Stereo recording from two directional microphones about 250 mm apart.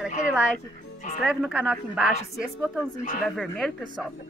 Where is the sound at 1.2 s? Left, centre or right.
Centre.